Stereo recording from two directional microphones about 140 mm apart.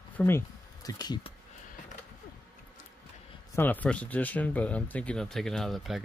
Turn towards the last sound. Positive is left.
turn(degrees=0)  # may be behind; listen again after turning